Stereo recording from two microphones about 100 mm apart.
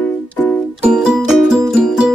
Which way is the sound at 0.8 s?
5° right (ahead or behind).